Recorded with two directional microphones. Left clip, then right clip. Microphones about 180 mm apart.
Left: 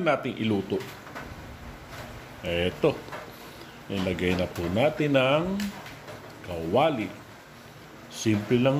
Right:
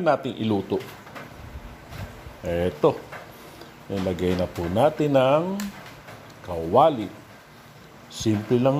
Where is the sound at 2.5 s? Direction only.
20° right (ahead or behind).